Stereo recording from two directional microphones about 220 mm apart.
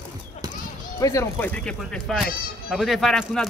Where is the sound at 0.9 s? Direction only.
15° left (ahead or behind).